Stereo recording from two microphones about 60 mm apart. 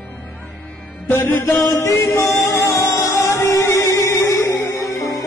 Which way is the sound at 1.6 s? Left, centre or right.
Left.